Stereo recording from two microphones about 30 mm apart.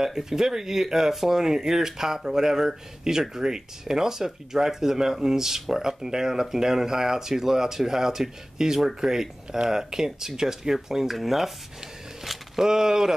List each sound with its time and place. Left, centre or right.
0.0 s speech: centre
12.5 s speech: centre